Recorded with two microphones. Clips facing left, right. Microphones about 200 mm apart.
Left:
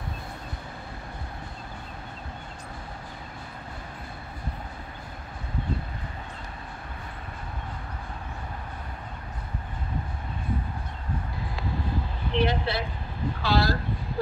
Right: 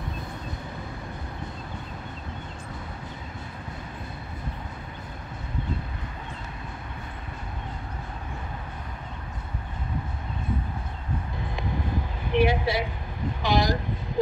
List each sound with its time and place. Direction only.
12.3 s speech: 10° right (ahead or behind)